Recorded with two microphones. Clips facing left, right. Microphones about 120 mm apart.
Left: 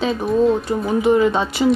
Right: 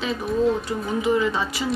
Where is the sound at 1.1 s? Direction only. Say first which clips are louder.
Left 6 dB; 30° left (ahead or behind).